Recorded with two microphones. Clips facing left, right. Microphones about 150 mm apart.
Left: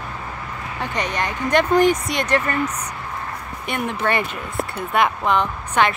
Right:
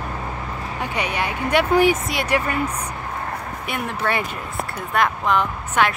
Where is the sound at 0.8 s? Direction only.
10° right (ahead or behind).